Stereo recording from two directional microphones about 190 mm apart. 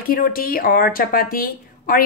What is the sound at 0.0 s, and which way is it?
Speech, 50° left (ahead or behind).